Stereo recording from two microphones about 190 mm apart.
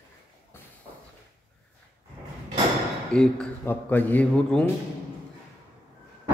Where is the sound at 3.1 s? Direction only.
5° left (ahead or behind).